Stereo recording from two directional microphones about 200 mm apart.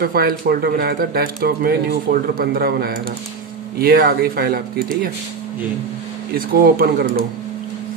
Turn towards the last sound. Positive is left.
turn(degrees=-50)  # may be behind; listen again after turning